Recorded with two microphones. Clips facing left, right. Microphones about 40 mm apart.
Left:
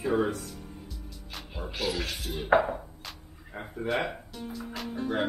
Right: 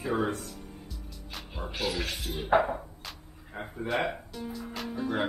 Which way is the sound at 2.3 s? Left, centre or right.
Centre.